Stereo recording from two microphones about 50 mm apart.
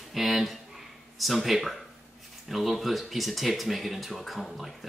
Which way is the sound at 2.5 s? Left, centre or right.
Centre.